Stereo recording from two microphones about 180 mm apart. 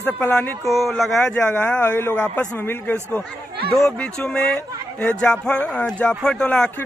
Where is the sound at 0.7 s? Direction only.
Centre (ahead or behind).